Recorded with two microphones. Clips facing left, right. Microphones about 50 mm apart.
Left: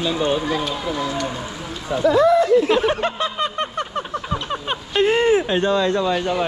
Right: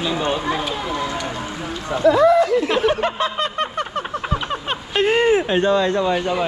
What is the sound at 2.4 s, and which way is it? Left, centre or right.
Speech, right.